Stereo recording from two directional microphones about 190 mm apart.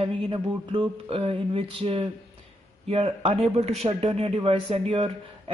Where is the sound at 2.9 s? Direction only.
30° right (ahead or behind).